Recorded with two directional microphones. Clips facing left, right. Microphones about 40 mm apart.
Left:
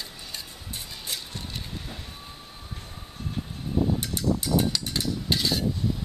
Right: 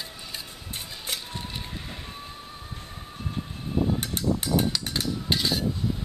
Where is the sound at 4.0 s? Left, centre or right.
Right.